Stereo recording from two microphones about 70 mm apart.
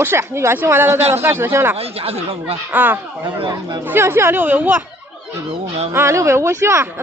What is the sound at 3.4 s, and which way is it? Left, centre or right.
Speech, right.